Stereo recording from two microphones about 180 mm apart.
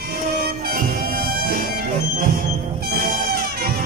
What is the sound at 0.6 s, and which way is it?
Bagpipes, 55° right (ahead or behind).